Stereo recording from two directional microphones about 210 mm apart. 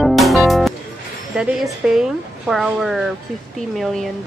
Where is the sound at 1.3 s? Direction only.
Centre (ahead or behind).